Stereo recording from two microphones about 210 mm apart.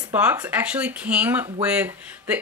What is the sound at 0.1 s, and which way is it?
Speech, 10° right (ahead or behind).